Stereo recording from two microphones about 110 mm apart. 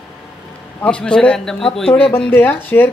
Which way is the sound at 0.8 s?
10° left (ahead or behind).